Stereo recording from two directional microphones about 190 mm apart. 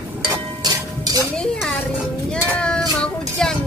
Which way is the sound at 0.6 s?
20° right (ahead or behind).